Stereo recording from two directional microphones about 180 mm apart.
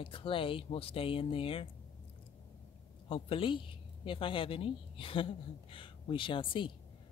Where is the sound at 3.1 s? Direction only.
30° left (ahead or behind).